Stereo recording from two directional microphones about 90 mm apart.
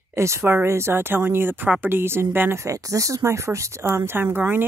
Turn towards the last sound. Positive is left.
turn(degrees=-20)  # may be behind; listen again after turning